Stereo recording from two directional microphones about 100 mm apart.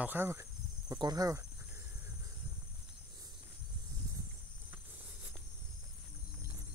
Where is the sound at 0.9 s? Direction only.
40° right (ahead or behind).